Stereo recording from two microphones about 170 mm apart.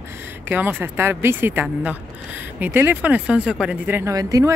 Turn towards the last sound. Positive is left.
turn(degrees=-20)  # may be behind; listen again after turning